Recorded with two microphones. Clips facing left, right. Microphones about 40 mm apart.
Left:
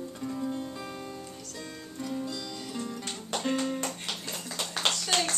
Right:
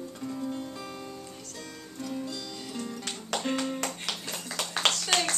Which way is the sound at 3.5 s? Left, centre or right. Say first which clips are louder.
Even; right.